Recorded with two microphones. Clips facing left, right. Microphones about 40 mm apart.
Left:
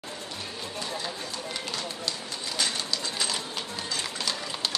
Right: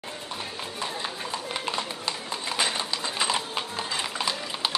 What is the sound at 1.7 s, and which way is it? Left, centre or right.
Run, right.